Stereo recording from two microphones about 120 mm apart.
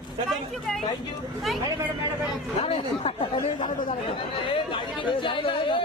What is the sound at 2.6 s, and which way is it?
Speech, 55° left (ahead or behind).